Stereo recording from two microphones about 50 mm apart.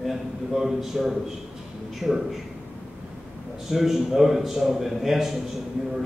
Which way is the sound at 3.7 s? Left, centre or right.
Centre.